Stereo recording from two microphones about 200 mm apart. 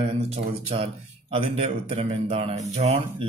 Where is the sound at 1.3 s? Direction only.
30° right (ahead or behind).